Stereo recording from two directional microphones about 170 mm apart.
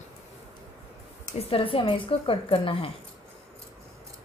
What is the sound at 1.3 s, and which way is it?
A woman's voice, 35° left (ahead or behind).